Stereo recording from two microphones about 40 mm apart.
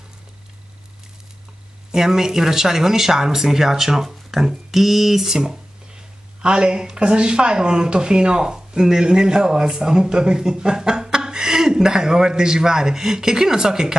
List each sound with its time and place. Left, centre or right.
1.9 s speech: centre